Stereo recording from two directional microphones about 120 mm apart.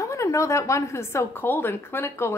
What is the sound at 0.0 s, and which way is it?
A woman's voice, 25° left (ahead or behind).